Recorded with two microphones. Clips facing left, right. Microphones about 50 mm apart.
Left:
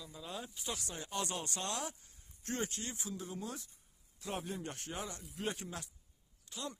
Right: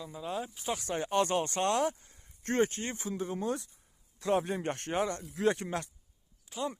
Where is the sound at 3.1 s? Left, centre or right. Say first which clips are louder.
Right 13 dB; right.